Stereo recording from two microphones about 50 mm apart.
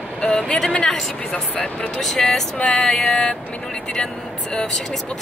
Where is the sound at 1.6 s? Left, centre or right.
Centre.